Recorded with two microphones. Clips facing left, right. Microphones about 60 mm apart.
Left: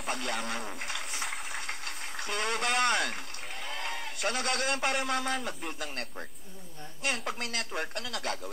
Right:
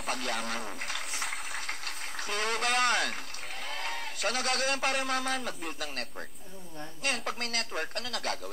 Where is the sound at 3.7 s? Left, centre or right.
Centre.